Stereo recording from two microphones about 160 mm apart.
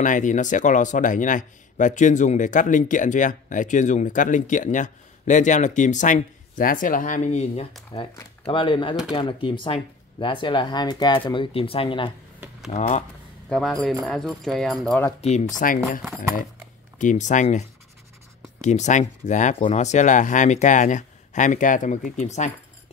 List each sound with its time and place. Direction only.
0.0 s speech: 55° left (ahead or behind)
7.9 s speech: 30° left (ahead or behind)
12.7 s speech: 50° left (ahead or behind)
13.5 s speech: centre (ahead or behind)
15.5 s speech: 60° left (ahead or behind)
17.0 s speech: 50° left (ahead or behind)